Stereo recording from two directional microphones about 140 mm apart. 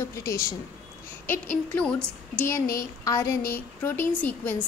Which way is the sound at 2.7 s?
20° left (ahead or behind).